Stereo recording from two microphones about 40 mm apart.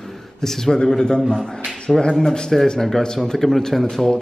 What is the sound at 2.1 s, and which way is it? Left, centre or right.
A man's voice, centre.